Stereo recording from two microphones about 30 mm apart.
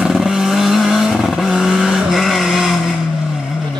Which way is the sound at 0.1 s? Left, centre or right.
Centre.